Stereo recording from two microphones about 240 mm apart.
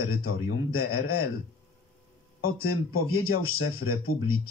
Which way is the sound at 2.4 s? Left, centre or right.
Left.